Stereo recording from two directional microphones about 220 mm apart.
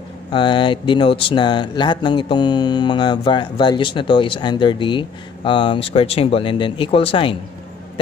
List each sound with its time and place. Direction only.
0.3 s speech: 20° left (ahead or behind)